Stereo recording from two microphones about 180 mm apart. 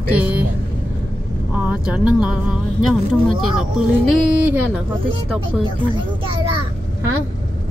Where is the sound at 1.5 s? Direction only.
5° right (ahead or behind).